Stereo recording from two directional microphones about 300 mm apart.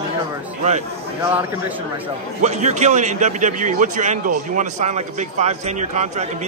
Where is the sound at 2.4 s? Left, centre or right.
Right.